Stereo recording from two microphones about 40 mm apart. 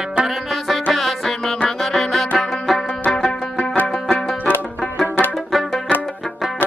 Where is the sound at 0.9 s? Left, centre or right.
Centre.